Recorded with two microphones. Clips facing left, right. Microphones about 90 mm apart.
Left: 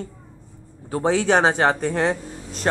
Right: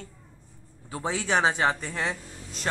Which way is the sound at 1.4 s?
50° left (ahead or behind).